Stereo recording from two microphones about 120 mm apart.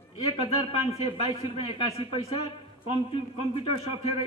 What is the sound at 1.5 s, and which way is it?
A man's voice, 45° left (ahead or behind).